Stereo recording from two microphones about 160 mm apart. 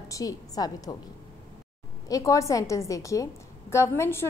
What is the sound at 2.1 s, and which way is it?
A woman's voice, 20° left (ahead or behind).